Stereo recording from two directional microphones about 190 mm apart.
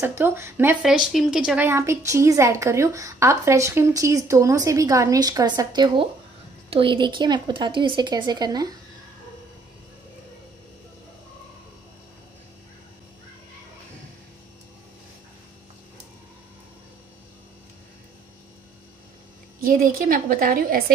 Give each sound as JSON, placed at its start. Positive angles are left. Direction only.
{"t": 0.0, "sound": "speech", "side_deg": -15}
{"t": 19.6, "sound": "a woman's voice", "side_deg": -45}